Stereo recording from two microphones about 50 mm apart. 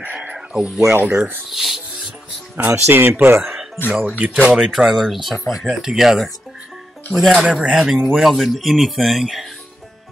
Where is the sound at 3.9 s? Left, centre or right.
Right.